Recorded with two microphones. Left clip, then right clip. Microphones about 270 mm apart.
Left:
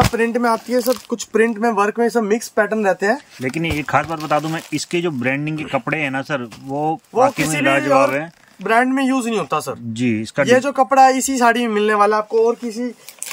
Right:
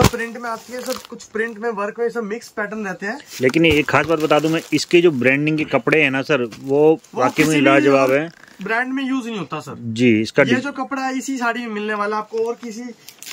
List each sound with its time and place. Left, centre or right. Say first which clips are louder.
0.1 s speech: left 8 dB; left
3.4 s speech: right 8 dB; centre
8.6 s speech: left 5 dB; left
9.9 s speech: right 5 dB; centre
10.5 s speech: left 8 dB; left